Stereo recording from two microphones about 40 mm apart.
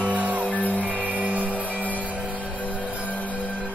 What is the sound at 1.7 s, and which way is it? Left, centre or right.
Music, left.